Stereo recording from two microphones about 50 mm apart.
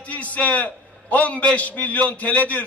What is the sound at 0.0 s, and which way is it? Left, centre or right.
A man's voice, left.